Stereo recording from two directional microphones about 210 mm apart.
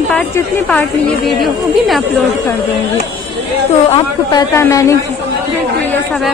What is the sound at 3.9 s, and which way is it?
Speech, 20° left (ahead or behind).